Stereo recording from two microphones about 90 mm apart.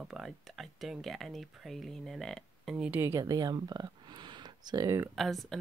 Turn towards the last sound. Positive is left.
turn(degrees=0)  # may be behind; listen again after turning